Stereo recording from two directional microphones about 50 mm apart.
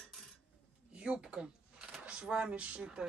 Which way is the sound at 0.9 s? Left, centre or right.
Right.